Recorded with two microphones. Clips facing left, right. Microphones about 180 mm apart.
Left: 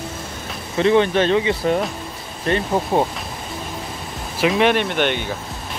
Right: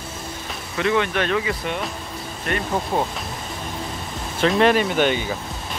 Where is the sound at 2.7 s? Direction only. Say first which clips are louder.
Left 3 dB; 20° left (ahead or behind).